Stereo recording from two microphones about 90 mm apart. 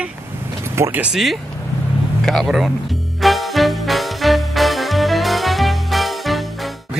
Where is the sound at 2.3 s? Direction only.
Centre (ahead or behind).